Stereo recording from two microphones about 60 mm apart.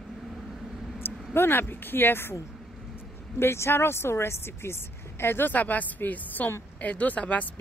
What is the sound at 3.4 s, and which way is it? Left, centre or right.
Speech, left.